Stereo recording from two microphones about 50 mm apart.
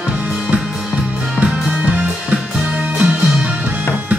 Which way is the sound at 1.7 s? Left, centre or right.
Right.